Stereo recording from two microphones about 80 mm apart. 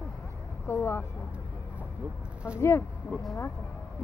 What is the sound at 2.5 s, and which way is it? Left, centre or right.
Speech, left.